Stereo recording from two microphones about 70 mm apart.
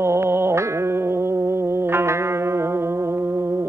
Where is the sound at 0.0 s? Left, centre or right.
Right.